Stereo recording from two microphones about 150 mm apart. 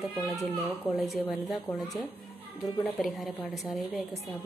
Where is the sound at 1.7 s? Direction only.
25° left (ahead or behind).